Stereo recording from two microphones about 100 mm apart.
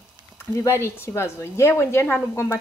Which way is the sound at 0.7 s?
25° left (ahead or behind).